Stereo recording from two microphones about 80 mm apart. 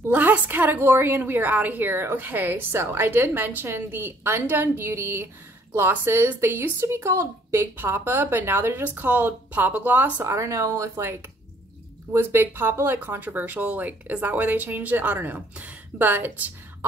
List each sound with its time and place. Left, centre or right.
0.1 s a woman's voice: right
10.2 s a woman's voice: right